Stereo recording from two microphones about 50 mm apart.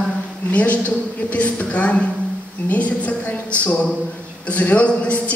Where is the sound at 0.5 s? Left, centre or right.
Left.